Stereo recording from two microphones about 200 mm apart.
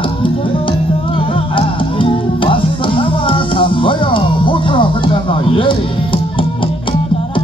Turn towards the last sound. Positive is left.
turn(degrees=25)  # may be behind; listen again after turning